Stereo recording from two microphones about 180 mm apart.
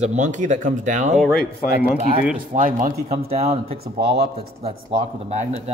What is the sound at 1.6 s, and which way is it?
Speech, 50° left (ahead or behind).